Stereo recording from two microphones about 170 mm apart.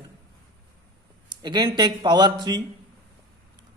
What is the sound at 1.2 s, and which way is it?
A man's voice, 25° right (ahead or behind).